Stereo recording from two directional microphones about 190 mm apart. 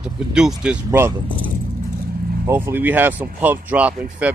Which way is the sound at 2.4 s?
10° right (ahead or behind).